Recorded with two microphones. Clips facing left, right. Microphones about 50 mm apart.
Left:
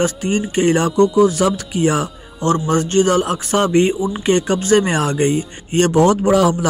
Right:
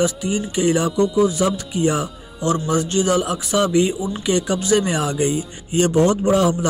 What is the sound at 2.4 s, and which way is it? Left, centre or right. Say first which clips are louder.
A man's voice: left 3 dB; left.